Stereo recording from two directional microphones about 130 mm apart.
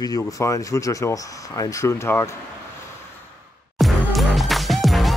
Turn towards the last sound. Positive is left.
turn(degrees=0)  # may be behind; listen again after turning